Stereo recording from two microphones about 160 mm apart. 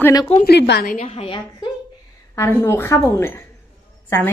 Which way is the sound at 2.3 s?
15° left (ahead or behind).